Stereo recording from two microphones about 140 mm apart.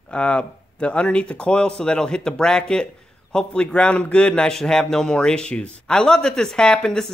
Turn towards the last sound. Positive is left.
turn(degrees=5)  # may be behind; listen again after turning